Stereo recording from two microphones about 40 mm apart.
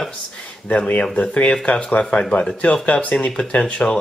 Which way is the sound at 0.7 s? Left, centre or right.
Left.